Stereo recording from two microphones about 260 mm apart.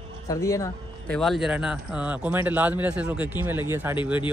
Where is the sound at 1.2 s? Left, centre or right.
Centre.